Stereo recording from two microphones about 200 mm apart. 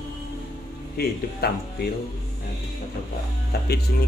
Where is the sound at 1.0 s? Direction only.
50° left (ahead or behind).